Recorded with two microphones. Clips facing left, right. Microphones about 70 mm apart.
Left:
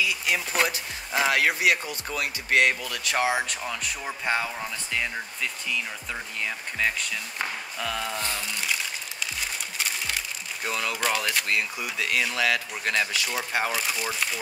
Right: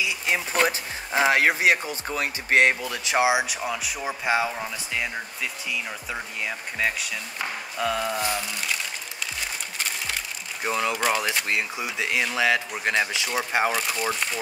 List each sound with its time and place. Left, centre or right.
0.0 s a sound: centre
1.1 s speech: right
9.8 s a sound: centre
10.6 s speech: centre
11.4 s speech: right
13.7 s speech: centre